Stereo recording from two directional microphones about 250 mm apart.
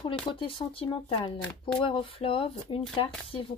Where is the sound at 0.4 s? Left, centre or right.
Left.